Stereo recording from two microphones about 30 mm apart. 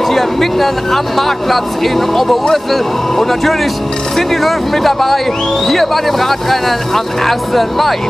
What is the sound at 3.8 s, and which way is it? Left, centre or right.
Music, centre.